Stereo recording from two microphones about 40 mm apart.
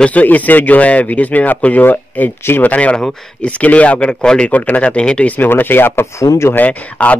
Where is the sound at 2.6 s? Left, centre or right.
Left.